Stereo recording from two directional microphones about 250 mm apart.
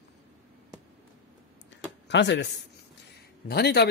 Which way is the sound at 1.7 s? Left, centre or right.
Left.